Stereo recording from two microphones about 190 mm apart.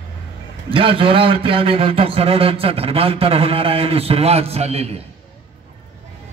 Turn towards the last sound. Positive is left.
turn(degrees=-30)  # may be behind; listen again after turning